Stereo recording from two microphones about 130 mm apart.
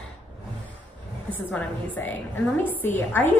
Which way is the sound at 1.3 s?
15° left (ahead or behind).